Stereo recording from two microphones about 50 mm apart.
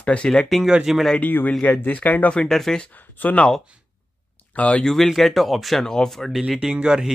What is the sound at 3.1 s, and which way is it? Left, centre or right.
Speech, left.